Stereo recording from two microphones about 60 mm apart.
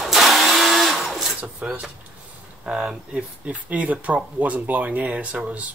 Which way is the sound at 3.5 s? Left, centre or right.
Right.